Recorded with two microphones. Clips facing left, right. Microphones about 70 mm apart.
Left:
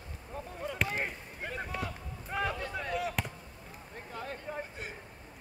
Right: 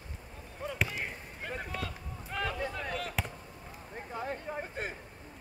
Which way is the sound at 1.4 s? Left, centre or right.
Centre.